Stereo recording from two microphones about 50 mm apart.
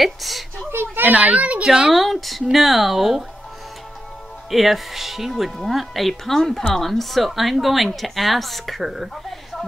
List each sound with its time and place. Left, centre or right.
0.0 s a sound: centre
0.7 s a sound: right
1.0 s a child's voice: right
1.6 s a woman's voice: centre
2.0 s a woman's voice: centre
4.5 s a woman's voice: centre